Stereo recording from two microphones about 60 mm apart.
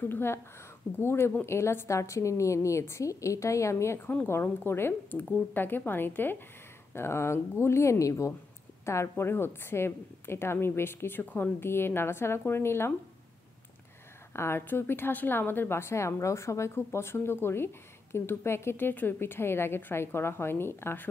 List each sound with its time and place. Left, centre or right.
0.1 s a woman's voice: left
8.8 s a woman's voice: left
14.3 s a woman's voice: left